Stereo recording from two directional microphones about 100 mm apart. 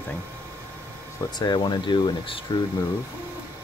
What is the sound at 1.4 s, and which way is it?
Speech, 45° left (ahead or behind).